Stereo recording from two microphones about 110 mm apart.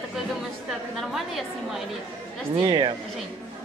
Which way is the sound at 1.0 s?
Centre (ahead or behind).